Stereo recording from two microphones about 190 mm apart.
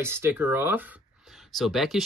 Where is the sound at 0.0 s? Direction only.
10° right (ahead or behind).